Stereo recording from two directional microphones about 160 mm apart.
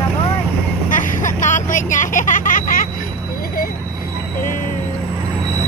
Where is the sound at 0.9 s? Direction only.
50° left (ahead or behind).